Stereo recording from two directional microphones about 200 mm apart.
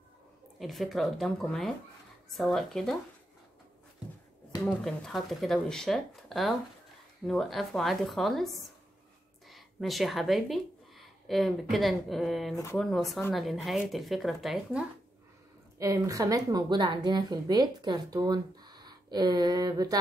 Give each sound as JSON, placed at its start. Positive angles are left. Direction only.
{"t": 0.6, "sound": "speech", "side_deg": 0}
{"t": 4.6, "sound": "speech", "side_deg": 0}
{"t": 9.5, "sound": "speech", "side_deg": 0}
{"t": 15.8, "sound": "a woman's voice", "side_deg": -15}